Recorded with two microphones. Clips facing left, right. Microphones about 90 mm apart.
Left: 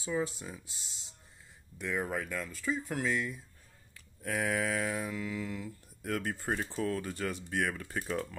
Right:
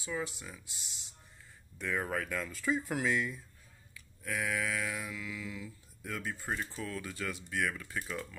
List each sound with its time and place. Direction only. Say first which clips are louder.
0.0 s speech: left 4 dB; 30° left (ahead or behind)
1.8 s speech: even; 5° left (ahead or behind)
3.9 s a sound: left 3 dB; 45° left (ahead or behind)
6.9 s speech: left 4 dB; 40° left (ahead or behind)